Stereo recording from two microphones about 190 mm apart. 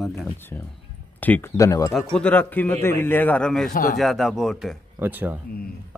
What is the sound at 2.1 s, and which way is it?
A man's voice, 5° left (ahead or behind).